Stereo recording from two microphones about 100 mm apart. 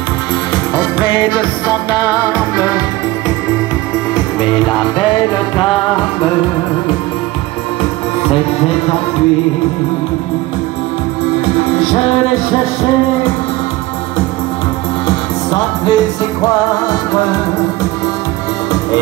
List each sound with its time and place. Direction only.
0.7 s music: 50° left (ahead or behind)
4.1 s music: 50° left (ahead or behind)
15.0 s music: 45° left (ahead or behind)